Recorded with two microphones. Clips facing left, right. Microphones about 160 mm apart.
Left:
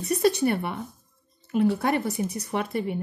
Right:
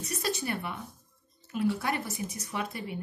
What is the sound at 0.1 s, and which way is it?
Speech, 60° left (ahead or behind).